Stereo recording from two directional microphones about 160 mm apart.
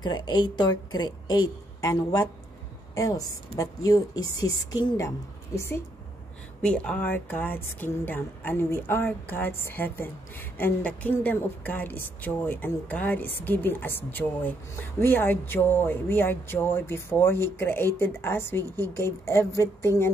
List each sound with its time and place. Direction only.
0.0 s a woman's voice: 25° left (ahead or behind)
6.6 s a woman's voice: 5° left (ahead or behind)